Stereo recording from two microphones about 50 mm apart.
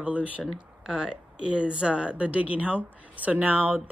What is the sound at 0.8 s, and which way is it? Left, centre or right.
Speech, centre.